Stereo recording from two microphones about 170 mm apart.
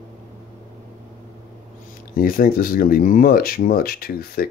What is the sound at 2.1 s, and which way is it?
Speech, 60° left (ahead or behind).